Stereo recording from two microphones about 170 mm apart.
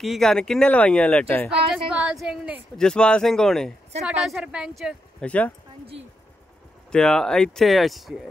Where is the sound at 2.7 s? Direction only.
5° left (ahead or behind).